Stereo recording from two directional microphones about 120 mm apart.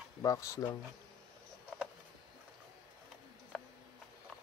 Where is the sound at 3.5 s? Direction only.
Centre (ahead or behind).